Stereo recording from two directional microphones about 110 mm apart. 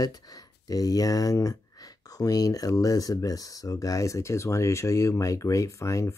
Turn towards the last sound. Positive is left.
turn(degrees=25)  # may be behind; listen again after turning